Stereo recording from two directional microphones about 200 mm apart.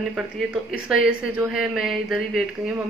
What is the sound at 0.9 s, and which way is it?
A woman's voice, 5° right (ahead or behind).